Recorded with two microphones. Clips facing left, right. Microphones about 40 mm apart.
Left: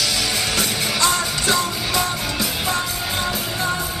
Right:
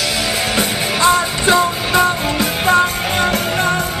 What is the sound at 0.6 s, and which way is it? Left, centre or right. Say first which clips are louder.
Music: right 6 dB; right.